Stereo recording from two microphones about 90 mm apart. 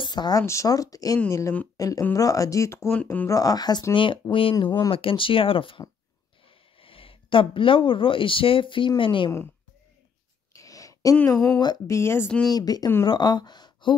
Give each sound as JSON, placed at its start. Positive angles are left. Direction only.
{"t": 0.0, "sound": "a sound", "side_deg": 55}
{"t": 0.4, "sound": "speech", "side_deg": 35}
{"t": 2.9, "sound": "speech", "side_deg": 20}
{"t": 3.3, "sound": "speech", "side_deg": 40}
{"t": 3.9, "sound": "speech", "side_deg": 70}
{"t": 4.6, "sound": "speech", "side_deg": 55}
{"t": 6.8, "sound": "speech", "side_deg": 90}
{"t": 10.5, "sound": "a sound", "side_deg": 40}
{"t": 11.5, "sound": "speech", "side_deg": 50}
{"t": 11.9, "sound": "speech", "side_deg": 30}
{"t": 12.4, "sound": "speech", "side_deg": 45}